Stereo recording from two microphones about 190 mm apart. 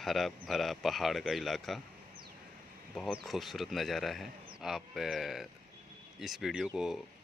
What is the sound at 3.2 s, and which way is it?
Speech, centre (ahead or behind).